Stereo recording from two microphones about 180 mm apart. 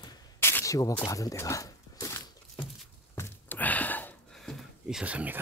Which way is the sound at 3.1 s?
10° left (ahead or behind).